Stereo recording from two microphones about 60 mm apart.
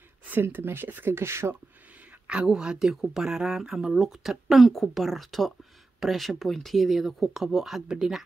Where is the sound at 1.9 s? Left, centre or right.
Centre.